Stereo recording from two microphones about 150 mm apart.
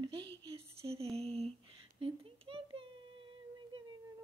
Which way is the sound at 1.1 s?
45° right (ahead or behind).